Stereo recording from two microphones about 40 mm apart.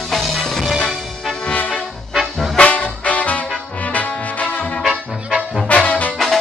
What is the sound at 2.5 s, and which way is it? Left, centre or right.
Music, left.